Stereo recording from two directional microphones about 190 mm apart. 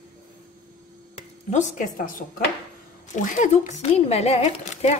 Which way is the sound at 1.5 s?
45° left (ahead or behind).